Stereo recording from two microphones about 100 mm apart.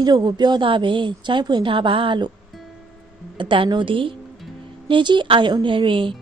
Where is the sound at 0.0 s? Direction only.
45° right (ahead or behind).